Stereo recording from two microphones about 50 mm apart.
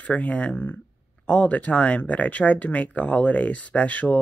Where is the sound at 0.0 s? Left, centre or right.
Left.